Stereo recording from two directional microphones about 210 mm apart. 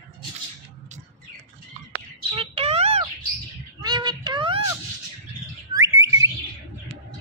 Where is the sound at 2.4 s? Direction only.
30° right (ahead or behind).